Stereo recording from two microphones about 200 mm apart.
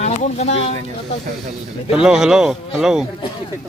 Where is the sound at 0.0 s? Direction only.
35° left (ahead or behind).